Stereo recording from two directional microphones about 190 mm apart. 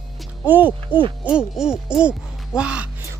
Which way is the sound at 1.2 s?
5° right (ahead or behind).